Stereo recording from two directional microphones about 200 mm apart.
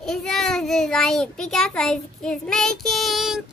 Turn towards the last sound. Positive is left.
turn(degrees=0)  # may be behind; listen again after turning